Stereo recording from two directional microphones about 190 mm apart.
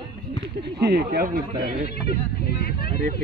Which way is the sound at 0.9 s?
55° right (ahead or behind).